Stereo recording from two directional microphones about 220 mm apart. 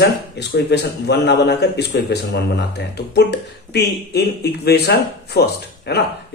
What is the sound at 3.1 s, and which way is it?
Speech, 50° left (ahead or behind).